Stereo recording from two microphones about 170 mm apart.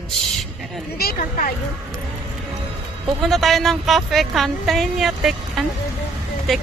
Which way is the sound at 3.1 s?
Centre (ahead or behind).